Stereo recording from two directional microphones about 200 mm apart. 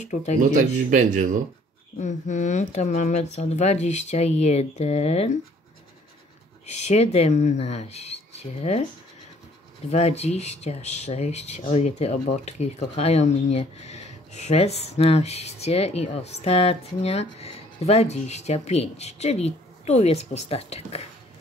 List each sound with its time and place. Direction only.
0.0 s speech: 35° left (ahead or behind)
0.4 s speech: 40° right (ahead or behind)
2.0 s speech: 35° left (ahead or behind)
6.6 s speech: 35° left (ahead or behind)
9.8 s speech: 30° left (ahead or behind)